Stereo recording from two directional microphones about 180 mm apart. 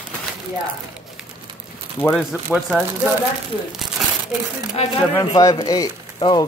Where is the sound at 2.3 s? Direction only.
5° right (ahead or behind).